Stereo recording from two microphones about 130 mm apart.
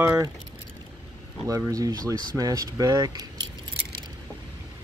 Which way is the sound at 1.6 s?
25° right (ahead or behind).